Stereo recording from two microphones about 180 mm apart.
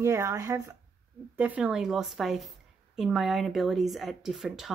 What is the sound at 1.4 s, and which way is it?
Speech, 5° right (ahead or behind).